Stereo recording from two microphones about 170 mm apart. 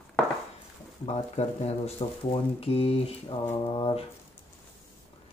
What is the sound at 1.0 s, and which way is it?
Speech, 40° left (ahead or behind).